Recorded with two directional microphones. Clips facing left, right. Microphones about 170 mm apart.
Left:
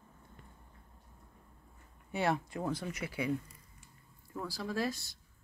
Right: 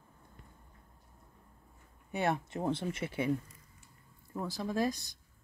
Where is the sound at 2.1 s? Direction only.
20° right (ahead or behind).